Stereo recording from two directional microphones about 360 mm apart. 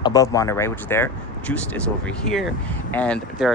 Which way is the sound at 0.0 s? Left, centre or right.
Centre.